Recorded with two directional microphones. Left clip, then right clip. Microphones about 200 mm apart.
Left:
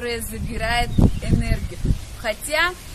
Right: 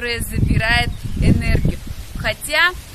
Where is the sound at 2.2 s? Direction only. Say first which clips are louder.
Right 4 dB; 5° left (ahead or behind).